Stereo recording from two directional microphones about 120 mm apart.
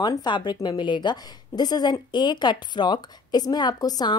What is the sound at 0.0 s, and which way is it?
A woman's voice, 35° left (ahead or behind).